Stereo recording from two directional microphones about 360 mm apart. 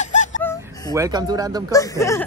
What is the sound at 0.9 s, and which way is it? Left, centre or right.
Speech, centre.